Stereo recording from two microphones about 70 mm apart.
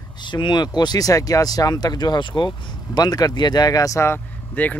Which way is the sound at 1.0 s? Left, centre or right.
Left.